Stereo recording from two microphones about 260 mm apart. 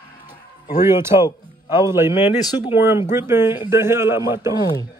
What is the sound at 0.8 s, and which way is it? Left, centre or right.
A man's voice, centre.